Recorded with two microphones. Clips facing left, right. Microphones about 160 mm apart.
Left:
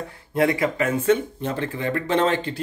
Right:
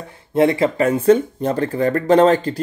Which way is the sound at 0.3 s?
25° right (ahead or behind).